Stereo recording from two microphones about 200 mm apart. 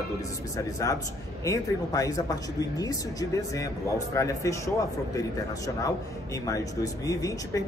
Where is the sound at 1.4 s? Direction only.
15° left (ahead or behind).